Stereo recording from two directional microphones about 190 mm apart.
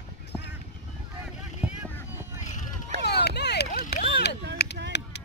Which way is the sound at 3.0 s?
60° left (ahead or behind).